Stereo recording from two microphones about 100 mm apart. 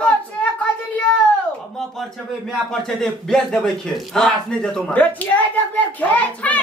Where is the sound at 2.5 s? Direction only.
5° left (ahead or behind).